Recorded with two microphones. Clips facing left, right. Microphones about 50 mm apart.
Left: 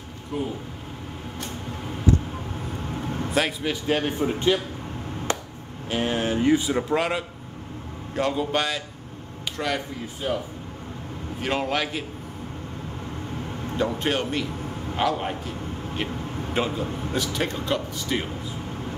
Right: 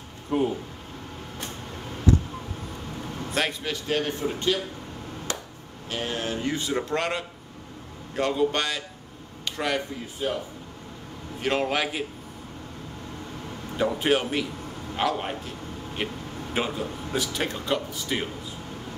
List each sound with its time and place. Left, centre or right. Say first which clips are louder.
0.3 s speech: right 5 dB; right
3.3 s speech: left 3 dB; centre
3.8 s a man's voice: left 2 dB; centre
5.3 s chop: left 6 dB; left
5.9 s a sound: left 5 dB; centre
6.6 s speech: left 3 dB; centre
11.4 s speech: even; centre
13.7 s speech: right 2 dB; centre